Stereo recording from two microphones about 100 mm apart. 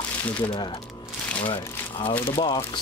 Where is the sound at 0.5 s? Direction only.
55° left (ahead or behind).